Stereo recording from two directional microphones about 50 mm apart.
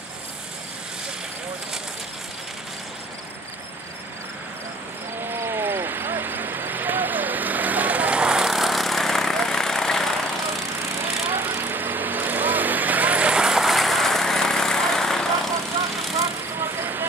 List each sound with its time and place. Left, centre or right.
5.3 s vehicle: right; by 10.3 s centre
11.3 s vehicle: right; by 13.6 s centre
13.6 s vehicle: centre